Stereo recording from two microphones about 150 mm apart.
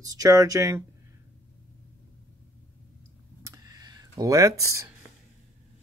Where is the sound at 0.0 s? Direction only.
25° right (ahead or behind).